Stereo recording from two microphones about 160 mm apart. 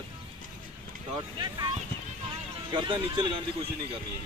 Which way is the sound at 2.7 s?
30° right (ahead or behind).